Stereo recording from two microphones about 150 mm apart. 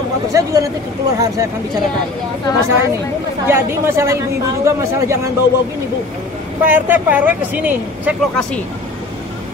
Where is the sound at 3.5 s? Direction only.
15° right (ahead or behind).